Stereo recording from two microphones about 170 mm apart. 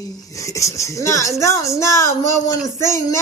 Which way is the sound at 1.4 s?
20° left (ahead or behind).